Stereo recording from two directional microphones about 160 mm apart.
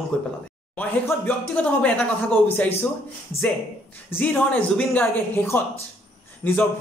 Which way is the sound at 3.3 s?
35° left (ahead or behind).